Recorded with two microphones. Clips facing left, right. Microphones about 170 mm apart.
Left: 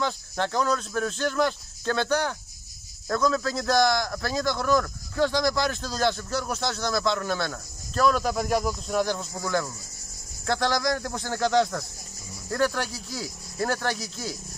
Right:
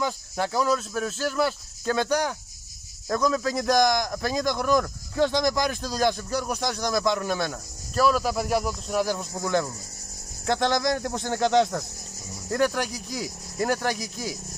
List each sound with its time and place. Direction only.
0.0 s speech: 10° right (ahead or behind)